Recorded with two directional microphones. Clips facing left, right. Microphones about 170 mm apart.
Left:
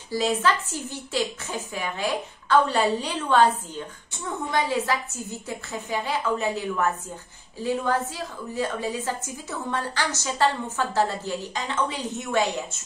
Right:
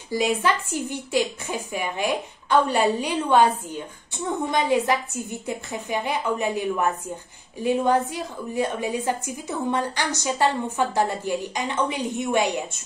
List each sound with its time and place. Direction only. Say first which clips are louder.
0.1 s a woman's voice: right 1 dB; 15° right (ahead or behind)